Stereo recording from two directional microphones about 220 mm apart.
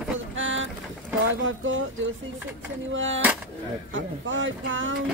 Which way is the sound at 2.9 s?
60° right (ahead or behind).